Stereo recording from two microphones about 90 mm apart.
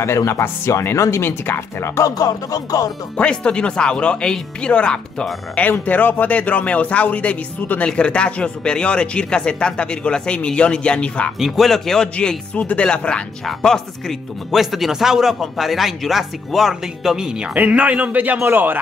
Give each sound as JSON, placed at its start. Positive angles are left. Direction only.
{"t": 0.0, "sound": "speech", "side_deg": 30}
{"t": 3.2, "sound": "speech", "side_deg": 10}
{"t": 11.3, "sound": "speech", "side_deg": 0}
{"t": 17.6, "sound": "a man's voice", "side_deg": -15}